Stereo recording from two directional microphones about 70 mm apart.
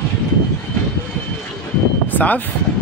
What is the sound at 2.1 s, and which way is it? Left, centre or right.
Speech, left.